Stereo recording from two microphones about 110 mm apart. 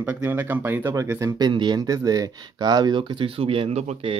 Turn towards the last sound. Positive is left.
turn(degrees=-75)  # may be behind; listen again after turning